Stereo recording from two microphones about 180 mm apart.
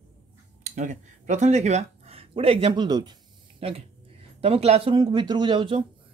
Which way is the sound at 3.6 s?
35° right (ahead or behind).